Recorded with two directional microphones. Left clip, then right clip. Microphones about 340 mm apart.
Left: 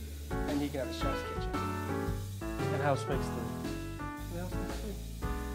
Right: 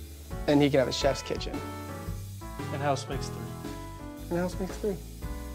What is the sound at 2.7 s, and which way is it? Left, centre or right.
Speech, left.